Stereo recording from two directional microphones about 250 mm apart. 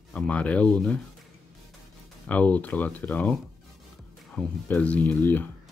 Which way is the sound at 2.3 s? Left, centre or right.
Centre.